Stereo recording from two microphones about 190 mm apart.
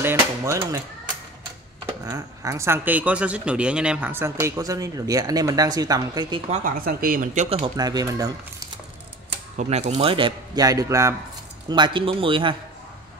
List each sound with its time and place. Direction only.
0.0 s a sound: 15° right (ahead or behind)
2.0 s speech: 15° right (ahead or behind)
6.5 s speech: 45° right (ahead or behind)
7.4 s a man's voice: 30° right (ahead or behind)
9.6 s a man's voice: 35° right (ahead or behind)